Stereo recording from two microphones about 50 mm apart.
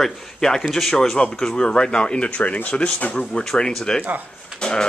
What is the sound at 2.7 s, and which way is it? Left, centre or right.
A man's voice, centre.